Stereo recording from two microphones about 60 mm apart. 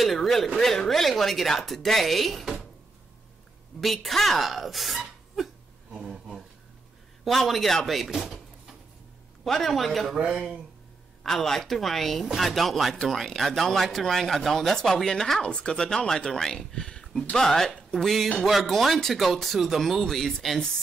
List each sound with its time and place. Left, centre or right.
0.0 s speech: centre
3.8 s speech: centre
5.9 s a sound: centre
7.2 s speech: centre
11.2 s speech: centre